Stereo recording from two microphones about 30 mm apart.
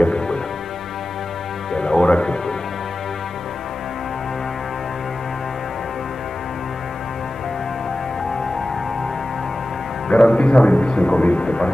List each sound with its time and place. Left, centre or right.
1.8 s music: left
10.1 s music: left
11.0 s speech: left
11.4 s speech: left